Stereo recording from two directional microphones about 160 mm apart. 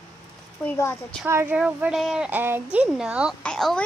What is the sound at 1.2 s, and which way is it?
A woman's voice, 15° right (ahead or behind).